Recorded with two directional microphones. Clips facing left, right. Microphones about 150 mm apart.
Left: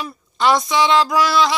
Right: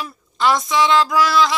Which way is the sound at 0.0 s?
Centre (ahead or behind).